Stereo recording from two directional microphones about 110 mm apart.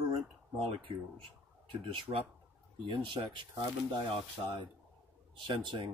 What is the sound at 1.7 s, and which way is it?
Speech, 50° right (ahead or behind).